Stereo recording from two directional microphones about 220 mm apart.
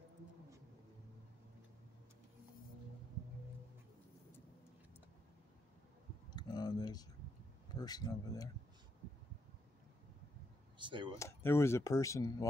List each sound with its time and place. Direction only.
6.3 s a sound: 20° left (ahead or behind)
7.7 s speech: 15° left (ahead or behind)
10.8 s speech: 20° right (ahead or behind)
11.1 s speech: 10° left (ahead or behind)